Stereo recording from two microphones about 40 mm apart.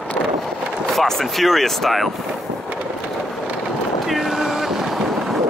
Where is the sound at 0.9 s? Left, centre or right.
Centre.